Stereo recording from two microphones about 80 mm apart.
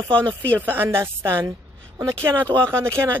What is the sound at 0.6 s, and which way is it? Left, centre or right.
Speech, right.